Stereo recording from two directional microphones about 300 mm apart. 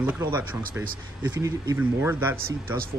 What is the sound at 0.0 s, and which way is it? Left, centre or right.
Speech, centre.